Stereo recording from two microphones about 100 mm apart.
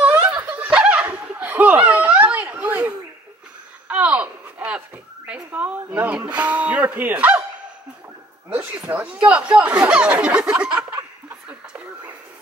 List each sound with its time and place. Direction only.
0.3 s snicker: 15° right (ahead or behind)
3.9 s a sound: 10° right (ahead or behind)
8.5 s speech: 15° right (ahead or behind)